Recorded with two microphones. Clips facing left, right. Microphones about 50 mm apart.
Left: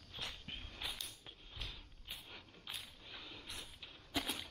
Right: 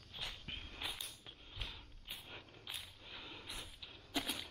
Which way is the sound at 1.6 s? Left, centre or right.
Centre.